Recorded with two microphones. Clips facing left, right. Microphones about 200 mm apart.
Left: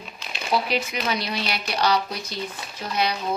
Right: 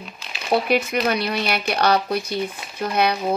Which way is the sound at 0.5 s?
55° right (ahead or behind).